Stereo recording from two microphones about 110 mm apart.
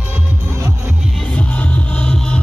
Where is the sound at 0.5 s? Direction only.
25° right (ahead or behind).